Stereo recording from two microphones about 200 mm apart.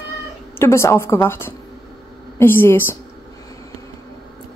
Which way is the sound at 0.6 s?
15° left (ahead or behind).